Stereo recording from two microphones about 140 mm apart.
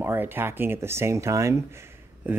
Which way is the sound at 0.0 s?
15° right (ahead or behind).